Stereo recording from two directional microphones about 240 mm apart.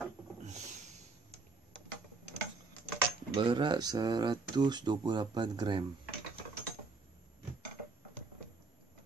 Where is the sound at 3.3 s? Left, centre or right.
Right.